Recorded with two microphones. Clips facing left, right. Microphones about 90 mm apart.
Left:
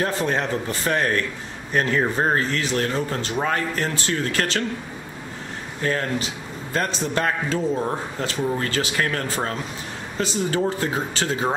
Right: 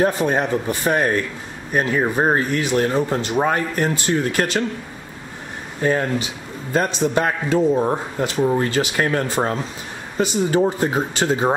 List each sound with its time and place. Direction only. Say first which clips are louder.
0.0 s speech: right 5 dB; 15° right (ahead or behind)
5.8 s speech: right 5 dB; 15° right (ahead or behind)